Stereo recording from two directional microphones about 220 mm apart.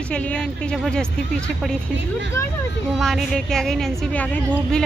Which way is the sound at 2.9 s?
Centre (ahead or behind).